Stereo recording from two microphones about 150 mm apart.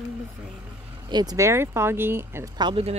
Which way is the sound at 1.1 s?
25° right (ahead or behind).